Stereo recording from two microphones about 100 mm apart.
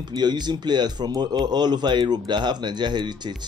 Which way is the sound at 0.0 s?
45° right (ahead or behind).